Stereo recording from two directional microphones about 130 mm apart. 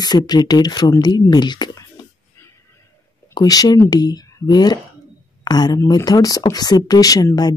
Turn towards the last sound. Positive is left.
turn(degrees=30)  # may be behind; listen again after turning